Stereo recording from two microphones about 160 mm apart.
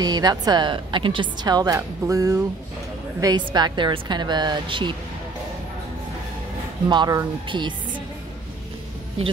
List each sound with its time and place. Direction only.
0.0 s a woman's voice: 25° right (ahead or behind)
6.9 s a woman's voice: 25° right (ahead or behind)